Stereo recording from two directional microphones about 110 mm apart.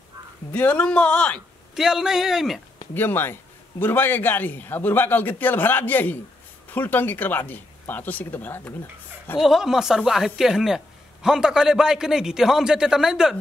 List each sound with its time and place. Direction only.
0.5 s a man's voice: 15° left (ahead or behind)
1.8 s a man's voice: 5° right (ahead or behind)
2.9 s a man's voice: 20° left (ahead or behind)
9.4 s a man's voice: 5° right (ahead or behind)